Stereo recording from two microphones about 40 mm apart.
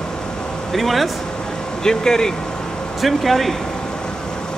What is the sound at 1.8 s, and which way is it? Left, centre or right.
Speech, centre.